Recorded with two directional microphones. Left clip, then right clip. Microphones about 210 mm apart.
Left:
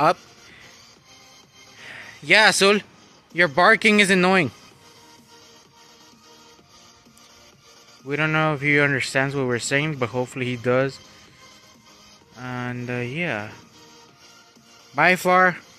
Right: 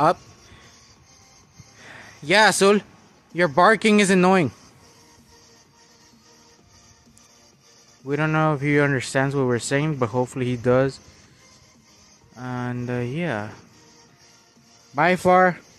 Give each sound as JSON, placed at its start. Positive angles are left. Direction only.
{"t": 1.8, "sound": "a sound", "side_deg": -5}
{"t": 3.3, "sound": "speech", "side_deg": -10}
{"t": 8.1, "sound": "speech", "side_deg": -10}
{"t": 12.4, "sound": "speech", "side_deg": -10}
{"t": 15.0, "sound": "speech", "side_deg": -10}